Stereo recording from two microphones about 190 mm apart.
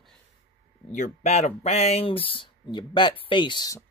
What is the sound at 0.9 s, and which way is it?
Speech, 35° left (ahead or behind).